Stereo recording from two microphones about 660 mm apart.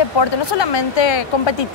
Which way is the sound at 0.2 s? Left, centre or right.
Left.